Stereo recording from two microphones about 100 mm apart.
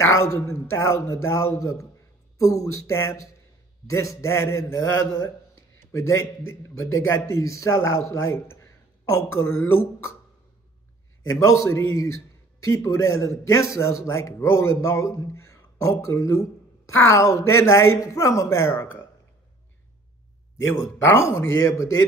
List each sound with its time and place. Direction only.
0.0 s a man's voice: 30° left (ahead or behind)
11.3 s a man's voice: 30° left (ahead or behind)
21.4 s a man's voice: 25° left (ahead or behind)